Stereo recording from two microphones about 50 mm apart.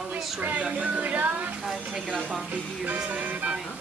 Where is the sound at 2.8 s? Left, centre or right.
Right.